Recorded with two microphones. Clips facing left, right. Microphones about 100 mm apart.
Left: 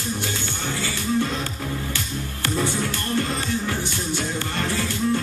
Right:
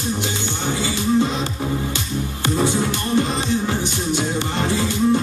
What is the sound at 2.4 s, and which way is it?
Music, 20° right (ahead or behind).